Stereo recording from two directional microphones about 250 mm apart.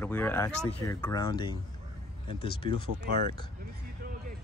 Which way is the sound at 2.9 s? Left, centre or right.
Right.